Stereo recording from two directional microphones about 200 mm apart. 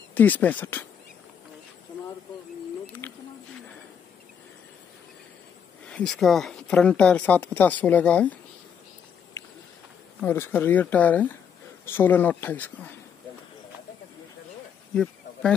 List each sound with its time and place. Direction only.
0.1 s speech: 10° left (ahead or behind)
3.0 s a sound: 10° left (ahead or behind)
5.9 s speech: 5° left (ahead or behind)
10.2 s speech: 10° left (ahead or behind)